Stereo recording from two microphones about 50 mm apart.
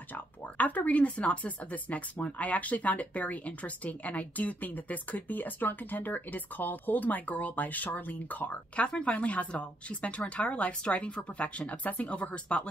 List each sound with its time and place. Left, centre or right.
0.1 s speech: left
8.8 s speech: left